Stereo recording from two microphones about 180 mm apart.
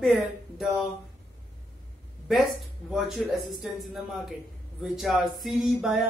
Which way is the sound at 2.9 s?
5° right (ahead or behind).